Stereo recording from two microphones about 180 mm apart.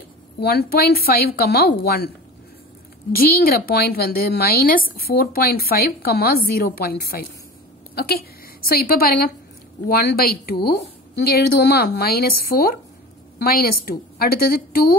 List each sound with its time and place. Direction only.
0.4 s a woman's voice: 60° left (ahead or behind)
3.1 s a woman's voice: 55° left (ahead or behind)